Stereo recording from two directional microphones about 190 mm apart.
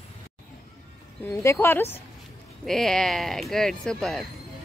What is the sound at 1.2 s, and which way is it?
Speech, 10° left (ahead or behind).